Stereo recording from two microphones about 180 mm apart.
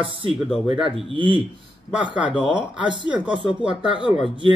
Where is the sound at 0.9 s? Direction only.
30° right (ahead or behind).